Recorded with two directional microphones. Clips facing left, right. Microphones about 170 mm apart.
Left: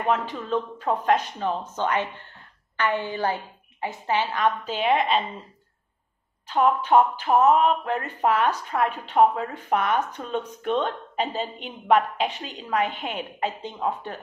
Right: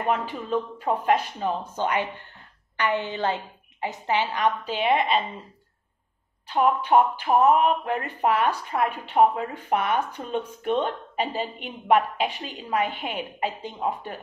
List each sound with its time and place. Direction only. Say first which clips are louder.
0.0 s a woman's voice: left 1 dB; 10° right (ahead or behind)
6.5 s speech: left 1 dB; 10° right (ahead or behind)